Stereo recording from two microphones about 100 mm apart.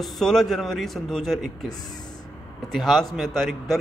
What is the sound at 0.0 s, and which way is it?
Speech, 5° left (ahead or behind).